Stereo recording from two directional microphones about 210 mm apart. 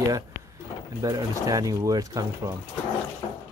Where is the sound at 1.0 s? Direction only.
15° right (ahead or behind).